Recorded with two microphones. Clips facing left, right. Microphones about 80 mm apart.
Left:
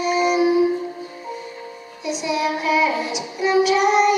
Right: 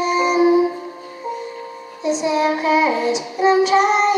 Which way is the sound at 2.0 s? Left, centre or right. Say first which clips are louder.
Right 5 dB; right.